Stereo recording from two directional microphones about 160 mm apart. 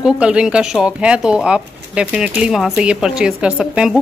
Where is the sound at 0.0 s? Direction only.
5° right (ahead or behind).